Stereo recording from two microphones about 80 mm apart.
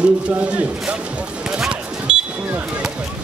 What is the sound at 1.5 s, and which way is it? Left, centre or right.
Basketball bounce, centre.